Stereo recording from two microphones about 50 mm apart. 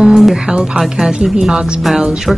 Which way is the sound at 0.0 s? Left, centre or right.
Centre.